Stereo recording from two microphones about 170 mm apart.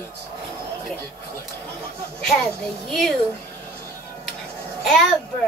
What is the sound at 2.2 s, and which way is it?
Speech, 5° left (ahead or behind).